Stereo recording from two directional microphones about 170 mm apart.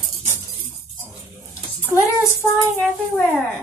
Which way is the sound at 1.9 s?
15° left (ahead or behind).